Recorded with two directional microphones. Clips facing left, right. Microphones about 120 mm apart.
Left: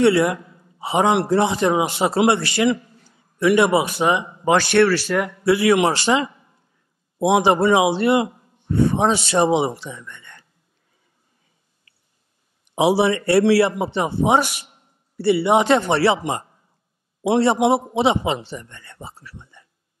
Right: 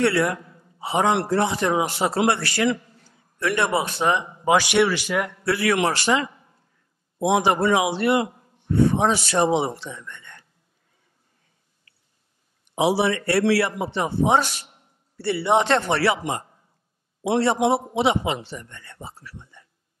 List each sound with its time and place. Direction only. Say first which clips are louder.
0.0 s a man's voice: left 5 dB; 20° left (ahead or behind)
4.5 s speech: left 3 dB; 10° right (ahead or behind)
5.4 s a man's voice: left 6 dB; 20° left (ahead or behind); by 10.4 s centre (ahead or behind)
11.9 s a sound: even; 10° left (ahead or behind)
12.7 s a man's voice: left 3 dB; 20° left (ahead or behind)
15.9 s a man's voice: left 4 dB; 25° left (ahead or behind)